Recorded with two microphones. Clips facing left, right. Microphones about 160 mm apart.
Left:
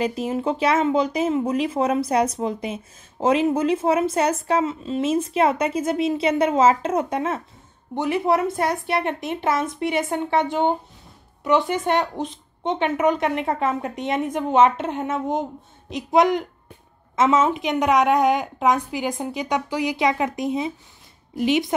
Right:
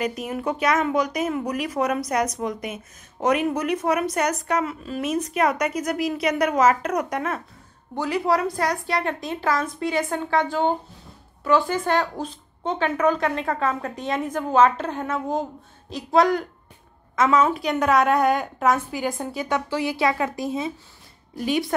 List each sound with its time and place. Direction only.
0.0 s a woman's voice: 30° left (ahead or behind)